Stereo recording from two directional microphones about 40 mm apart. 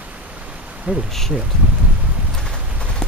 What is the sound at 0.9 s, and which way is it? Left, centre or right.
Speech, right.